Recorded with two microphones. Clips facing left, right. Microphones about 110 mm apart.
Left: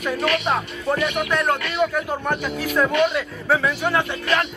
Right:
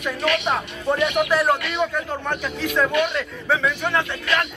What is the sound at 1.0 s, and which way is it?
Speech, centre (ahead or behind).